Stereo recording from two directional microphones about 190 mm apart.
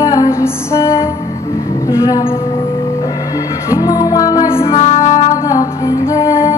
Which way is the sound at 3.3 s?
20° left (ahead or behind).